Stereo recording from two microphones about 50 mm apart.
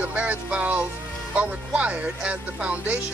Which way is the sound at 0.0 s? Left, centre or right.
Right.